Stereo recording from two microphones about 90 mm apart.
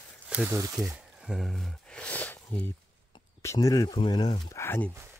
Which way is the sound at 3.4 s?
40° left (ahead or behind).